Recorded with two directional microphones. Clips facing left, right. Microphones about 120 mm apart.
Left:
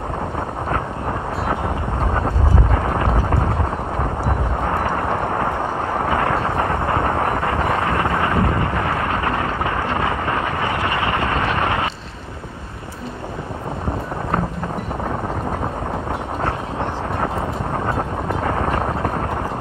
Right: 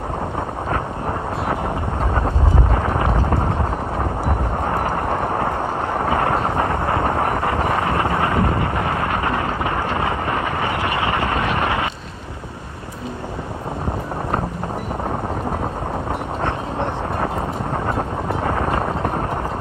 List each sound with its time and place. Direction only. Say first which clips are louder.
2.7 s a sound: even; 25° right (ahead or behind)
4.8 s clip-clop: even; 35° right (ahead or behind)
6.0 s vehicle: right 1 dB; 25° right (ahead or behind)
18.3 s music: even; 30° right (ahead or behind)